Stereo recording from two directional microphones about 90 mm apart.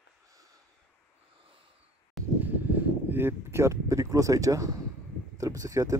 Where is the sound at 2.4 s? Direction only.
20° right (ahead or behind).